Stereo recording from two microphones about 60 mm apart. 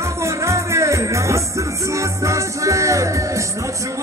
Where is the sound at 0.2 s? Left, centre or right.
Right.